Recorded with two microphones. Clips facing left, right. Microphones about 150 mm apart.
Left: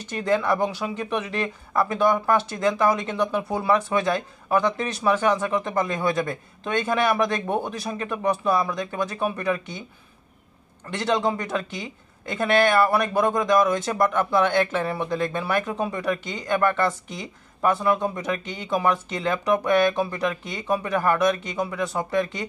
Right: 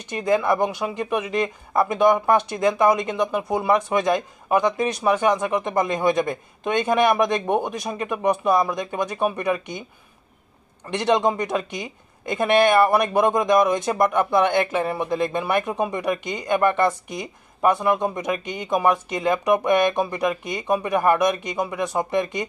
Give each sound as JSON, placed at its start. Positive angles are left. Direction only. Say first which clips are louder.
{"t": 0.2, "sound": "speech", "louder": "right 2 dB", "side_deg": -15}
{"t": 10.9, "sound": "speech", "louder": "right 3 dB", "side_deg": -20}